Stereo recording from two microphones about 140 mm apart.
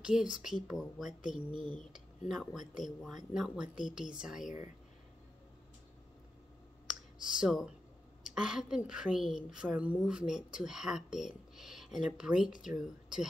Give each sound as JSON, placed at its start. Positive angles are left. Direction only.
{"t": 0.0, "sound": "a woman's voice", "side_deg": -5}
{"t": 1.3, "sound": "speech", "side_deg": -35}
{"t": 1.9, "sound": "a woman's voice", "side_deg": -5}
{"t": 6.9, "sound": "clicking", "side_deg": -5}
{"t": 8.4, "sound": "a woman's voice", "side_deg": -5}